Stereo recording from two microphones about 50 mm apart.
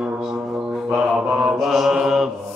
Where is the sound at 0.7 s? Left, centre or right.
Centre.